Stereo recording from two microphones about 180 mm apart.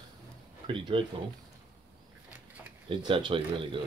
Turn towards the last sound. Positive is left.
turn(degrees=-30)  # may be behind; listen again after turning